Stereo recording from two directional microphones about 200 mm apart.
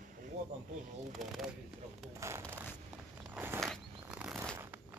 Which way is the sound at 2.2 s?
15° right (ahead or behind).